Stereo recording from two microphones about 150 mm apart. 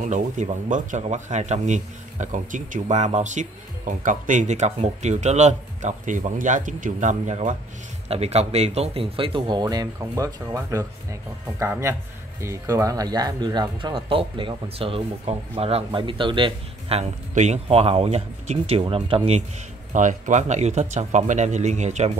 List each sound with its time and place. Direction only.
0.0 s speech: 55° right (ahead or behind); by 17.0 s 35° right (ahead or behind)
17.3 s speech: 50° right (ahead or behind)
19.9 s speech: 55° right (ahead or behind)